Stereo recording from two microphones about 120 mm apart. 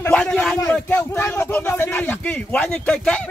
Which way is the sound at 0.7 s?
15° left (ahead or behind).